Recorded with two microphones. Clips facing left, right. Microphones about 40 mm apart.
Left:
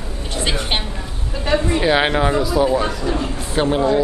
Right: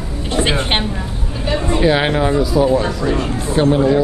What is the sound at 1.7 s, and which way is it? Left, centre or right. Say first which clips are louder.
Speech: right 4 dB; centre.